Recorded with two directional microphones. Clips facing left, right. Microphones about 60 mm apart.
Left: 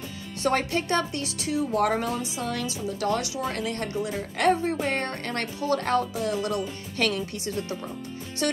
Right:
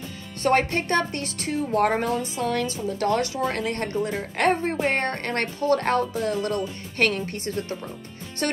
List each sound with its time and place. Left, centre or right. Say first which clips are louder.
0.4 s a woman's voice: right 4 dB; right